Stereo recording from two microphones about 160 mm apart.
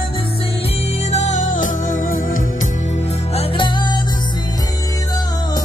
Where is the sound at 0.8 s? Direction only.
45° left (ahead or behind).